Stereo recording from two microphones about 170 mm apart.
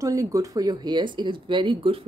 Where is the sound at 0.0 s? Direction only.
20° right (ahead or behind).